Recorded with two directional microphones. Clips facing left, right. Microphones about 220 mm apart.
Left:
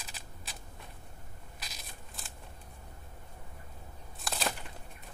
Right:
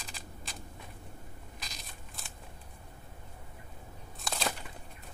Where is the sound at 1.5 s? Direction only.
5° left (ahead or behind).